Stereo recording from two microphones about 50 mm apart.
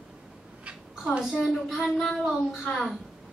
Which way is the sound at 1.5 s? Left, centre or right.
Centre.